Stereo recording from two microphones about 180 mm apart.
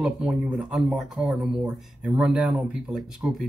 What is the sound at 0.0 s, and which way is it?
Speech, centre (ahead or behind).